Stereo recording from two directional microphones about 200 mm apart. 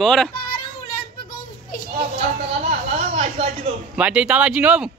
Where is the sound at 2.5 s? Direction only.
30° right (ahead or behind).